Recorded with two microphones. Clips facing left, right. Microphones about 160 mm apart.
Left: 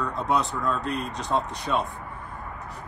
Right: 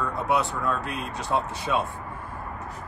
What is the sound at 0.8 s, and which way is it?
Speech, 5° right (ahead or behind).